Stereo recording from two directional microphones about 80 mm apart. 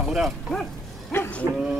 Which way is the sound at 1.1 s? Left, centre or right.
Left.